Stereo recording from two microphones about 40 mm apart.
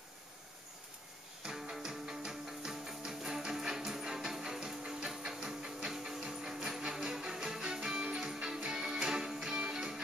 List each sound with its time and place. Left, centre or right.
1.4 s music: centre